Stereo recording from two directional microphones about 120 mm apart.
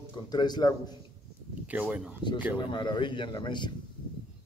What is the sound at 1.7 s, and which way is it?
Speech, 10° right (ahead or behind).